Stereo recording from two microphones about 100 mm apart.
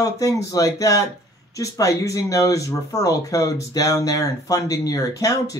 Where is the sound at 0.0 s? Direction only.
35° left (ahead or behind).